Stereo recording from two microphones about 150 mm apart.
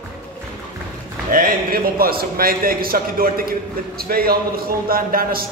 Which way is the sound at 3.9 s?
90° right.